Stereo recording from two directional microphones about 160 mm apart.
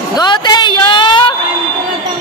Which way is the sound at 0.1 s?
25° left (ahead or behind).